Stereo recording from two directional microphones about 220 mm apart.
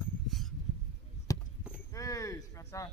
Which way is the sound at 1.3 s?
15° left (ahead or behind).